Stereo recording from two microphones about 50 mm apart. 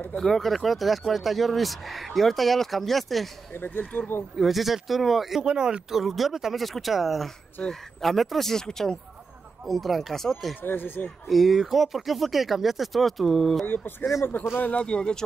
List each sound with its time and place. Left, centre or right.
0.2 s speech: centre
3.5 s speech: left
4.4 s speech: centre
5.4 s speech: centre
5.9 s speech: centre
7.6 s speech: centre
10.6 s speech: left
11.2 s speech: centre
14.6 s speech: left